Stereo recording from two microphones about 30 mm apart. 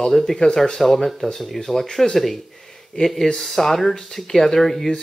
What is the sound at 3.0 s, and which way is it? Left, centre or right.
Speech, left.